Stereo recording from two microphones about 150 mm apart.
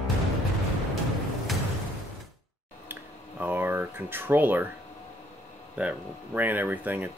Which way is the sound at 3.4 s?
15° right (ahead or behind).